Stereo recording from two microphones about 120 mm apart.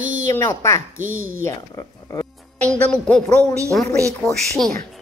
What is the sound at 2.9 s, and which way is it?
Speech, 10° left (ahead or behind).